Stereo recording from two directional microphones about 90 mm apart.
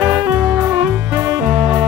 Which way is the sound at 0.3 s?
20° right (ahead or behind).